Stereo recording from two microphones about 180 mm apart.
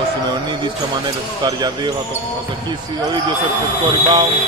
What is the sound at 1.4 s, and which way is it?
Speech, 20° right (ahead or behind).